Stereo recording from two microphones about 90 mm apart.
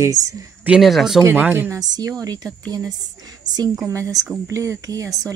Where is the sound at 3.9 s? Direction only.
35° right (ahead or behind).